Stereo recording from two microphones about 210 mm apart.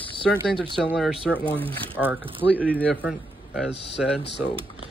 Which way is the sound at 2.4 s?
5° left (ahead or behind).